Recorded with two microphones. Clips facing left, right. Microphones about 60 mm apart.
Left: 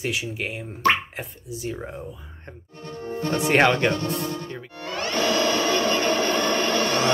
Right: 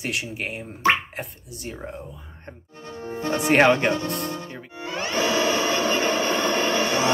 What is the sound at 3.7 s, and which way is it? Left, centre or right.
Speech, centre.